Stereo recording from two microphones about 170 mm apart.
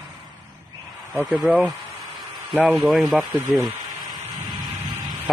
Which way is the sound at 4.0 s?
25° right (ahead or behind).